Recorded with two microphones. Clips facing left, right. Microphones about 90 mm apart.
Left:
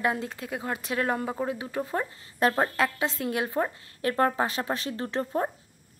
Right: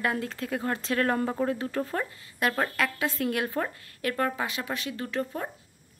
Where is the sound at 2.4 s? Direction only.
25° left (ahead or behind).